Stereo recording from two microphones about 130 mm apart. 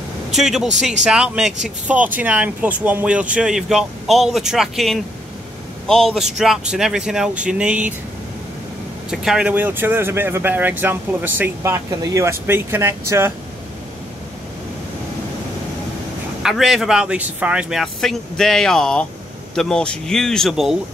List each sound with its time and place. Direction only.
0.3 s speech: 5° right (ahead or behind)
9.1 s speech: 5° right (ahead or behind); by 13.3 s 20° right (ahead or behind)
16.4 s speech: 5° right (ahead or behind)